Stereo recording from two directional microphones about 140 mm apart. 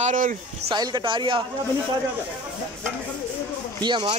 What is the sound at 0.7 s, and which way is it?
Speech, 30° right (ahead or behind).